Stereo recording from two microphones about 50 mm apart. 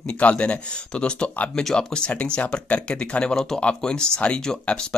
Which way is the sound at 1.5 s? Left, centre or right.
Centre.